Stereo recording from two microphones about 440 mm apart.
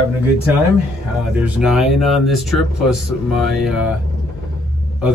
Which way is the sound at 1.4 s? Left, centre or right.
Centre.